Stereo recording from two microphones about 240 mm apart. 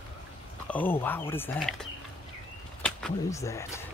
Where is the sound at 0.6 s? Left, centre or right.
Centre.